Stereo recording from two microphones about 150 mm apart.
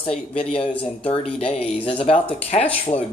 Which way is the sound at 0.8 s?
40° left (ahead or behind).